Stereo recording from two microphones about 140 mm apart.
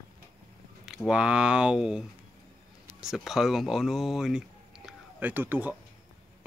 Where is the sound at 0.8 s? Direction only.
5° right (ahead or behind).